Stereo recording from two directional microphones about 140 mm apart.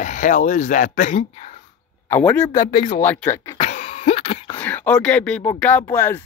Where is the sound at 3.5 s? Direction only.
55° left (ahead or behind).